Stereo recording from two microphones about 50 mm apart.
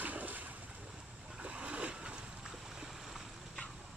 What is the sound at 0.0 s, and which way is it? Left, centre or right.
Boat, right.